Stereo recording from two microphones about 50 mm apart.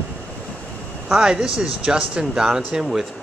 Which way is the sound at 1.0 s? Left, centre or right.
Centre.